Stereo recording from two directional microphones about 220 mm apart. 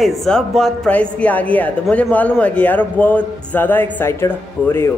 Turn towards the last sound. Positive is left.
turn(degrees=10)  # may be behind; listen again after turning